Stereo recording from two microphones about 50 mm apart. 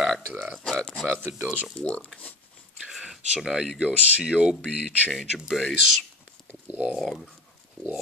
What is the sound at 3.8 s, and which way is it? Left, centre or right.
Speech, right.